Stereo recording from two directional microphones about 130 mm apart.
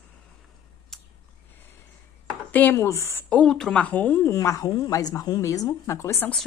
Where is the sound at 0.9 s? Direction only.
Centre (ahead or behind).